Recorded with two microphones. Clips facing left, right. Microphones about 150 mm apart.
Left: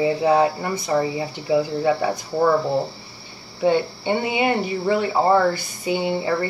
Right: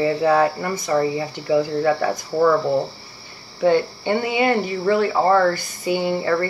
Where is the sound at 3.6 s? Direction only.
20° left (ahead or behind).